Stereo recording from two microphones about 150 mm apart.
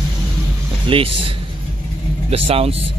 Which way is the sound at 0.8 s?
35° right (ahead or behind).